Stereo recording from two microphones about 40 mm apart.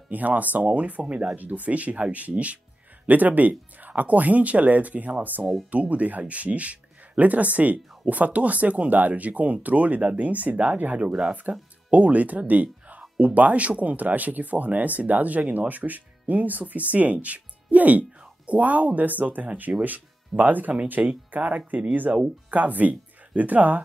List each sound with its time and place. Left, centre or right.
0.1 s speech: right
5.7 s speech: right
22.1 s speech: right
22.5 s speech: right